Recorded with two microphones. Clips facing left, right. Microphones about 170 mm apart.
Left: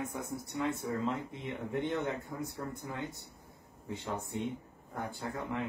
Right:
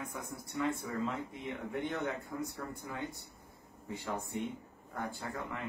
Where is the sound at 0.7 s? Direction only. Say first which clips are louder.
Left 2 dB; 20° left (ahead or behind).